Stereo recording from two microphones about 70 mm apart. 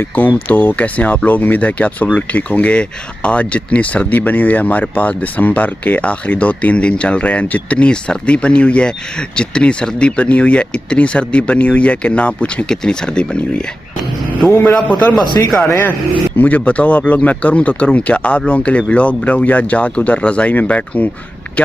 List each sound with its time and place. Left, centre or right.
0.1 s speech: left
14.5 s a man's voice: left
16.3 s speech: left